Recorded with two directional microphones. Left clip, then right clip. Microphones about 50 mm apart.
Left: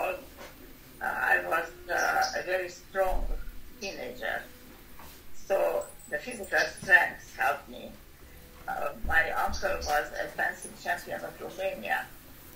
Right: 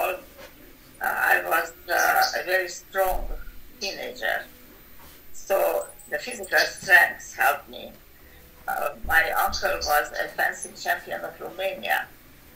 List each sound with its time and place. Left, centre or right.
0.9 s a sound: right
3.8 s speech: right
5.5 s speech: right